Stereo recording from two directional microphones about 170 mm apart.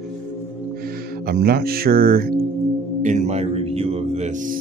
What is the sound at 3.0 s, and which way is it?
Speech, 45° right (ahead or behind).